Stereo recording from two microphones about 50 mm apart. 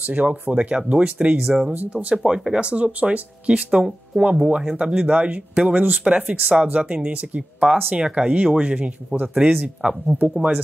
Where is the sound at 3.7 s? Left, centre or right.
Centre.